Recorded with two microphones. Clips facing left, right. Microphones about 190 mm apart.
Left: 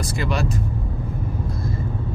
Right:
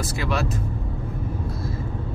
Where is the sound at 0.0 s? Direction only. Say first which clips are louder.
Left 1 dB; centre (ahead or behind).